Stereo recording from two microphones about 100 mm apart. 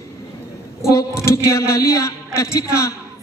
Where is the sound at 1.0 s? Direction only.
30° left (ahead or behind).